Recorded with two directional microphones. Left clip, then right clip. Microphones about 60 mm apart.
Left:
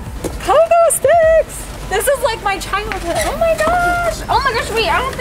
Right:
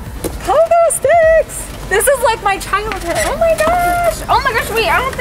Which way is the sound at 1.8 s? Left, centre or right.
Right.